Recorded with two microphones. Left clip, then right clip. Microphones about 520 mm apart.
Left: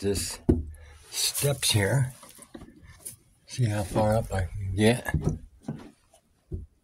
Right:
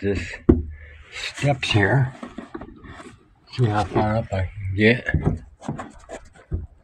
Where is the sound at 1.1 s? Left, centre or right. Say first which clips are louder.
Right 4 dB; left.